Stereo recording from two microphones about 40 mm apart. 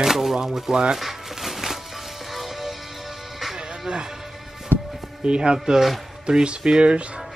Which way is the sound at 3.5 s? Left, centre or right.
Right.